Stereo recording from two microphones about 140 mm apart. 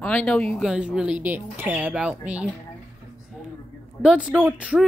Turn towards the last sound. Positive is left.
turn(degrees=-10)  # may be behind; listen again after turning